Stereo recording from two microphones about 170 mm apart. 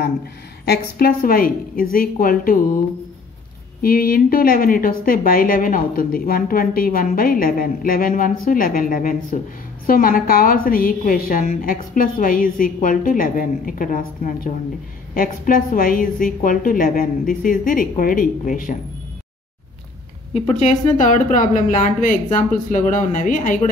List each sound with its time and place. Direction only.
0.7 s a woman's voice: 60° left (ahead or behind)
3.8 s a woman's voice: 60° left (ahead or behind)
20.3 s speech: 40° left (ahead or behind)